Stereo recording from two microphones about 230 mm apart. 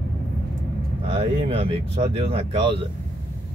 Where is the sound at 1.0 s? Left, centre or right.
Right.